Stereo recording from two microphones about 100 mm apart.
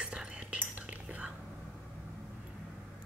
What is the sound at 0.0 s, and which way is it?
Whispering, 10° right (ahead or behind).